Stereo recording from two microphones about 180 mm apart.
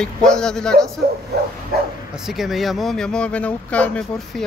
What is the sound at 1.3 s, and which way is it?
Bow-wow, 65° right (ahead or behind).